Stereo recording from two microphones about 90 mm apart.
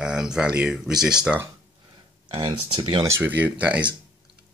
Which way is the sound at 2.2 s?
55° right (ahead or behind).